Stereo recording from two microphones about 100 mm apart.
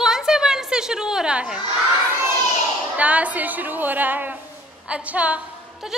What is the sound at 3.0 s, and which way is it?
A woman's voice, 15° right (ahead or behind).